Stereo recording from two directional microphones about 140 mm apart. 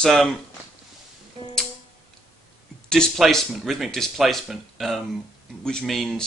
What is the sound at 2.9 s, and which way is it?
Speech, 5° left (ahead or behind).